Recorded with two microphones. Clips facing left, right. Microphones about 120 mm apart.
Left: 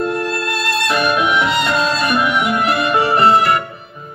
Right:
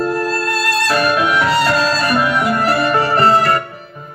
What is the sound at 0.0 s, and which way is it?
Music, 30° right (ahead or behind).